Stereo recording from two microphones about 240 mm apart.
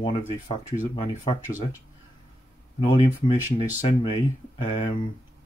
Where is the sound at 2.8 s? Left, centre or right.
Left.